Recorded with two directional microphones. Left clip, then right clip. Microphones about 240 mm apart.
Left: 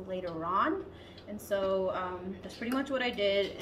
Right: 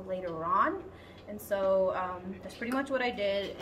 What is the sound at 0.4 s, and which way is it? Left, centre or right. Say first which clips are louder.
A woman's voice: right 2 dB; centre.